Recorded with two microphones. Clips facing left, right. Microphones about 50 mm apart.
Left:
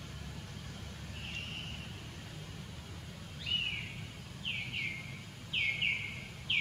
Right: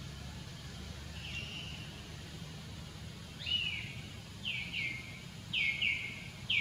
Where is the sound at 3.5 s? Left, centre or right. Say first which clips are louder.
Left 1 dB; centre.